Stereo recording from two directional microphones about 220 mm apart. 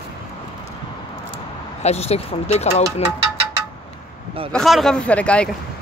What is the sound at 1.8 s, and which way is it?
Speech, 30° left (ahead or behind).